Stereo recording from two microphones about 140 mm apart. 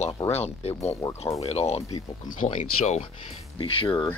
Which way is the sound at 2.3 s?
70° left (ahead or behind).